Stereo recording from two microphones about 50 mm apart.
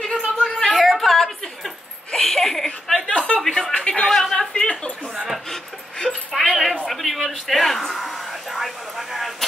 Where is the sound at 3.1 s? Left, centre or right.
Left.